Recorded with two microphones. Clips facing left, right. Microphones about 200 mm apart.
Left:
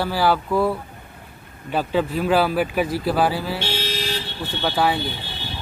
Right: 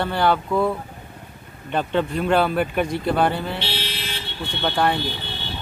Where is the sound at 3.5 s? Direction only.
45° left (ahead or behind).